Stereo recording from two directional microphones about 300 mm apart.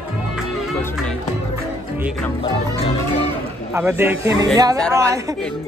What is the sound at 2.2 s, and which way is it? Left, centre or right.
Music, centre.